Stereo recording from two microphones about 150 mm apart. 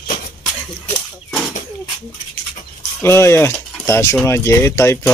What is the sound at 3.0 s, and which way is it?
Speech, 15° left (ahead or behind).